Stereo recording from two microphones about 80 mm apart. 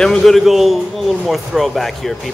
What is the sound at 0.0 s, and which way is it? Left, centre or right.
Speech, centre.